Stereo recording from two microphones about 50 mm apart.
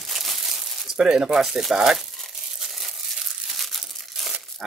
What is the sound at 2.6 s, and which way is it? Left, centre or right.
Crumpling, centre.